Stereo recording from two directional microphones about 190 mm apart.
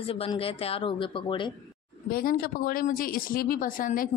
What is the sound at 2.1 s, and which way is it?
A woman's voice, 50° left (ahead or behind).